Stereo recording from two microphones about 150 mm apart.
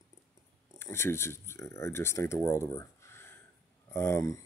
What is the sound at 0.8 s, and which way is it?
Speech, 15° left (ahead or behind).